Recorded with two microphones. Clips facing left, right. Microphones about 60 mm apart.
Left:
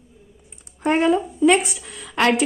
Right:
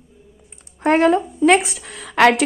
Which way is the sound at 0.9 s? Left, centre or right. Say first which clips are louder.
Right 3 dB; right.